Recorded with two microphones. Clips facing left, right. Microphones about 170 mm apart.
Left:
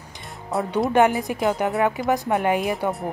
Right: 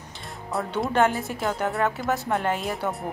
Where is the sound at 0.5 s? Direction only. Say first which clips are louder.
Left 4 dB; centre (ahead or behind).